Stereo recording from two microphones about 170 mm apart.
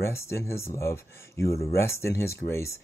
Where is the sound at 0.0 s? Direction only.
15° left (ahead or behind).